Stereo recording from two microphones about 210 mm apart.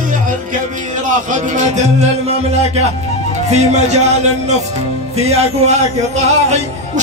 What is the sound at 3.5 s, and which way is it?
Speech, 35° right (ahead or behind).